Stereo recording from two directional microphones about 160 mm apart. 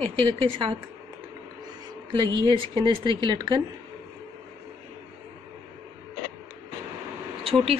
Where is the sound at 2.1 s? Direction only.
30° right (ahead or behind).